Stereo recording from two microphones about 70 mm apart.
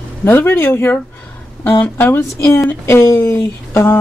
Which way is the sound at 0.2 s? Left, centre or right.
Left.